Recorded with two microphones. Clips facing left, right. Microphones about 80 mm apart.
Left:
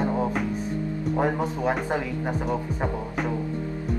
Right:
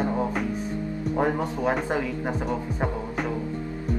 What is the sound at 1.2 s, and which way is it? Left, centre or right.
Speech, centre.